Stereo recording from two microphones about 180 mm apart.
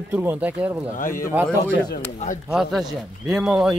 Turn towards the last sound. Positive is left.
turn(degrees=-5)  # may be behind; listen again after turning